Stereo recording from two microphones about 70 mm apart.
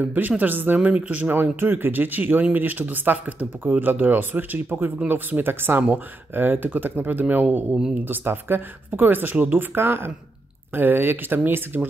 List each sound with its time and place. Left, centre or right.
0.0 s speech: right
7.7 s speech: centre
8.0 s speech: right